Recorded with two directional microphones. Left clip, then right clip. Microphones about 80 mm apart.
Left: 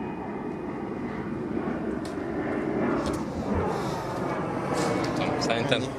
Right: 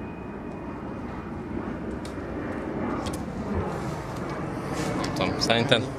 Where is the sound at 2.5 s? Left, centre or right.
Left.